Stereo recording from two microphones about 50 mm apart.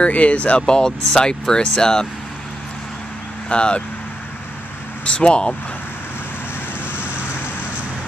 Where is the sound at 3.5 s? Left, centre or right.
Left.